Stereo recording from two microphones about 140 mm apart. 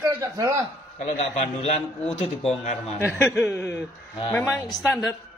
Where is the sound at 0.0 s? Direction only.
20° right (ahead or behind).